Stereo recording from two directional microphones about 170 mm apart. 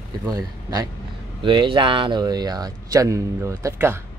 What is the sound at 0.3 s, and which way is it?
Speech, 20° right (ahead or behind).